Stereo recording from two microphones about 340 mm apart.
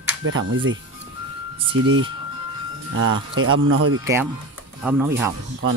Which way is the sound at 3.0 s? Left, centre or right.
Right.